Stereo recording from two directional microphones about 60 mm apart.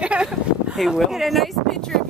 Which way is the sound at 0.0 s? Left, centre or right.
Centre.